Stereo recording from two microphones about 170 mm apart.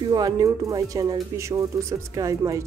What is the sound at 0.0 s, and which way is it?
Speech, 25° right (ahead or behind).